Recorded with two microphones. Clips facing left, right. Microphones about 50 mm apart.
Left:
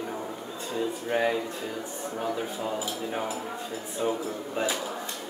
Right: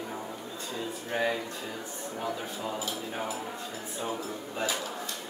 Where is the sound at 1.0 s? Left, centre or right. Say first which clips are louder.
Left 2 dB; centre.